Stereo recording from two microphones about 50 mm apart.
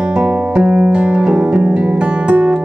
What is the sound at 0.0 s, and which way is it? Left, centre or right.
Music, centre.